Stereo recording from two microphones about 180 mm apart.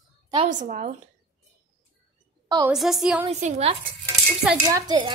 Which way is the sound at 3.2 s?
35° right (ahead or behind).